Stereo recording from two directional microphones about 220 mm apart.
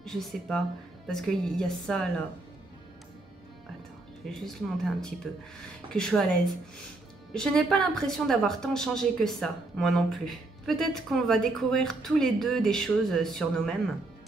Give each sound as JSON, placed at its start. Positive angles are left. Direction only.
{"t": 0.0, "sound": "a woman's voice", "side_deg": 0}
{"t": 4.3, "sound": "a woman's voice", "side_deg": 0}